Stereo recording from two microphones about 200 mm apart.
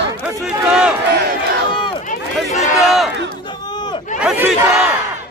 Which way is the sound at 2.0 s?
35° left (ahead or behind).